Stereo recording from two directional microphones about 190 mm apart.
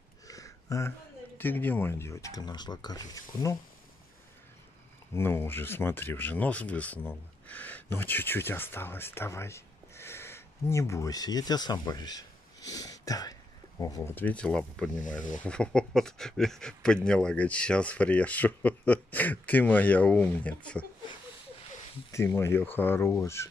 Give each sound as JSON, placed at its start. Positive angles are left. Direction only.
{"t": 0.3, "sound": "a sound", "side_deg": 15}
{"t": 1.4, "sound": "speech", "side_deg": 10}
{"t": 5.1, "sound": "speech", "side_deg": 10}
{"t": 15.0, "sound": "speech", "side_deg": 45}
{"t": 15.4, "sound": "speech", "side_deg": 5}
{"t": 22.1, "sound": "speech", "side_deg": 15}